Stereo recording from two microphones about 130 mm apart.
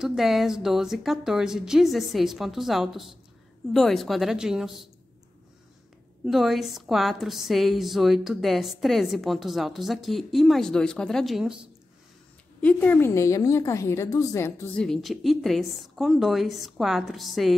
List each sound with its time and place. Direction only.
0.0 s a woman's voice: centre (ahead or behind)
6.2 s a woman's voice: centre (ahead or behind)
12.6 s a woman's voice: 15° left (ahead or behind)
14.8 s a woman's voice: centre (ahead or behind)